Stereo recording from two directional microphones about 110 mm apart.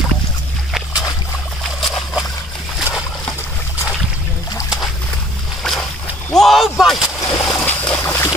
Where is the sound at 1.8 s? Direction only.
Centre (ahead or behind).